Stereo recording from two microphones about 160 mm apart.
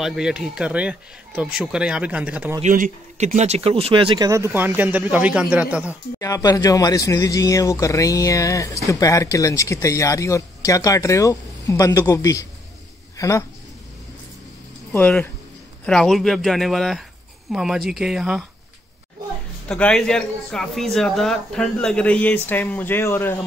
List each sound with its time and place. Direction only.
0.0 s speech: 5° right (ahead or behind)
2.6 s speech: 50° right (ahead or behind); by 4.5 s 25° right (ahead or behind)
4.5 s speech: 10° right (ahead or behind)
6.1 s speech: 20° left (ahead or behind)
14.9 s a man's voice: 5° left (ahead or behind)
19.7 s a man's voice: 5° left (ahead or behind)